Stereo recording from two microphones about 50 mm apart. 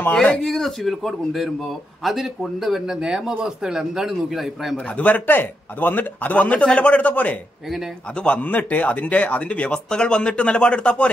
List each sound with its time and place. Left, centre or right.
0.4 s a man's voice: centre
4.9 s speech: left
6.3 s a man's voice: left